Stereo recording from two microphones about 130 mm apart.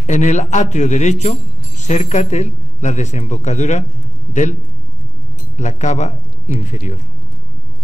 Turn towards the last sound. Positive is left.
turn(degrees=65)  # may be behind; listen again after turning